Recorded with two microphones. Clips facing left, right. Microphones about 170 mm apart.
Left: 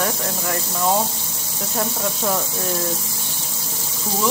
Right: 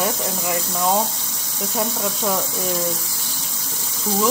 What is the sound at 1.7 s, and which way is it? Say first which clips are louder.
Speech: even; centre (ahead or behind).